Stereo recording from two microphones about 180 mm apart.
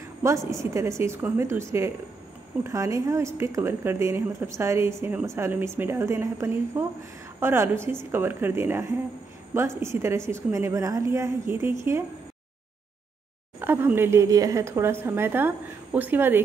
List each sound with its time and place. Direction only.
0.2 s speech: 15° right (ahead or behind)
13.6 s speech: 10° right (ahead or behind)